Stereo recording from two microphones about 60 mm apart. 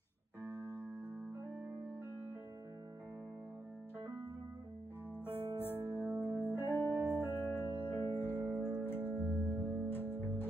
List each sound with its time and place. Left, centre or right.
5.2 s music: left
8.5 s music: centre
8.8 s music: left